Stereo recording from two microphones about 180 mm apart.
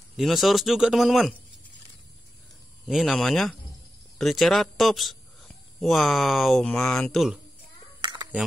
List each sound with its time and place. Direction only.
0.2 s speech: centre (ahead or behind)
2.9 s speech: centre (ahead or behind)
8.0 s a sound: 25° right (ahead or behind)